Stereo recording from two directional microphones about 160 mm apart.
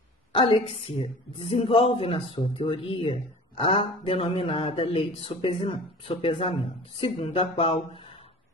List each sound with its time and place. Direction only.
0.3 s a woman's voice: 35° left (ahead or behind)